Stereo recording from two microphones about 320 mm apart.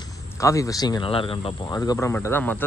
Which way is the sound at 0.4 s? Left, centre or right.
Centre.